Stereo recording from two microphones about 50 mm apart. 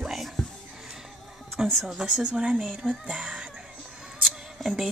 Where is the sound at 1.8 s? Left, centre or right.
Centre.